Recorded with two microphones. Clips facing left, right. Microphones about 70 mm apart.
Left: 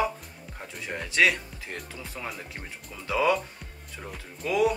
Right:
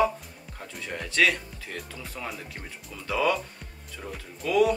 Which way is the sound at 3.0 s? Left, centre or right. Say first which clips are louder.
Left 1 dB; centre.